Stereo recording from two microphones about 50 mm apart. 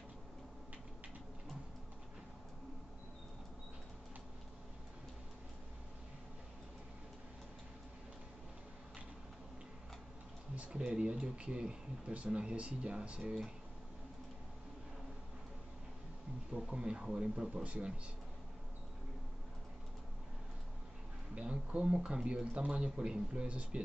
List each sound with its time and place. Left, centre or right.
10.5 s a sound: right
10.9 s speech: centre
16.5 s speech: centre
21.4 s speech: right